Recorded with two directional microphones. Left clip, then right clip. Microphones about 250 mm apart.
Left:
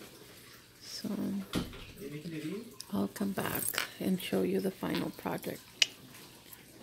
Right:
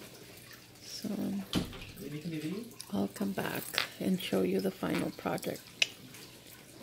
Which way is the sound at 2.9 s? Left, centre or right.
Centre.